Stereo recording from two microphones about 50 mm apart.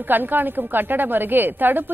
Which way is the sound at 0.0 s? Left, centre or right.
Right.